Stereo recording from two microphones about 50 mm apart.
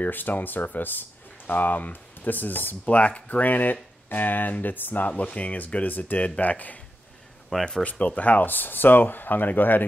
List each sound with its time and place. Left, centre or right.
0.0 s speech: left
5.1 s speech: left
7.4 s speech: centre
7.8 s speech: left